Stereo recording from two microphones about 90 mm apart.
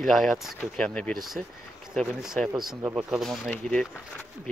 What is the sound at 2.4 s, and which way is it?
Speech, 10° left (ahead or behind).